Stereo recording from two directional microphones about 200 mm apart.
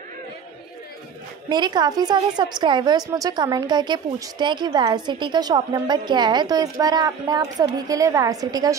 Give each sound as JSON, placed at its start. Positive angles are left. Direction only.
{"t": 1.5, "sound": "a woman's voice", "side_deg": -20}